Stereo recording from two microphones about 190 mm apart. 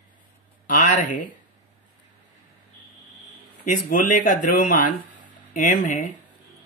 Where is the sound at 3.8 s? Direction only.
45° left (ahead or behind).